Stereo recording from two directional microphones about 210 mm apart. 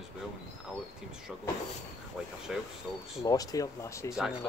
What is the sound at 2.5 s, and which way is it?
Speech, centre (ahead or behind).